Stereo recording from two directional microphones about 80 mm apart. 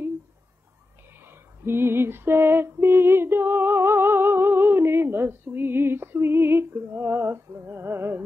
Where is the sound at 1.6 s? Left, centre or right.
Right.